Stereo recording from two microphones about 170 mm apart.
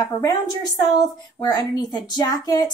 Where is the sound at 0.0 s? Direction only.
20° left (ahead or behind).